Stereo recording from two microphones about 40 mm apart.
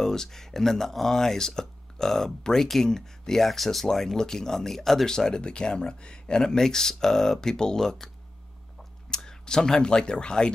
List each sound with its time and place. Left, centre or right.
0.0 s speech: centre
9.1 s speech: centre